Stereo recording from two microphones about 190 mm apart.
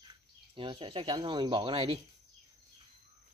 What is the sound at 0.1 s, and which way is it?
Speech, 25° right (ahead or behind).